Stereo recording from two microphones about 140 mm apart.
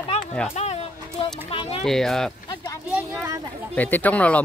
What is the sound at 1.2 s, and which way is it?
Speech, 40° left (ahead or behind).